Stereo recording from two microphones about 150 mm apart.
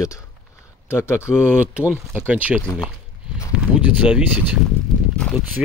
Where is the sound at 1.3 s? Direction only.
5° right (ahead or behind).